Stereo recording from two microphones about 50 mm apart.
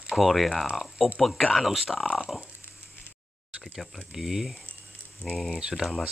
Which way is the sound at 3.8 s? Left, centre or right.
Centre.